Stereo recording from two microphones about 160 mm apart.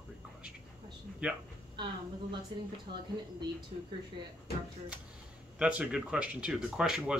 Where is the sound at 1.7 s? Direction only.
30° right (ahead or behind).